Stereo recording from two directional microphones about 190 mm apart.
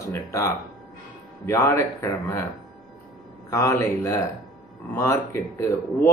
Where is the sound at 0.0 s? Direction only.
15° left (ahead or behind).